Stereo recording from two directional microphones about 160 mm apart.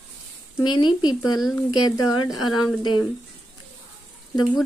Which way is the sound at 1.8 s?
20° left (ahead or behind).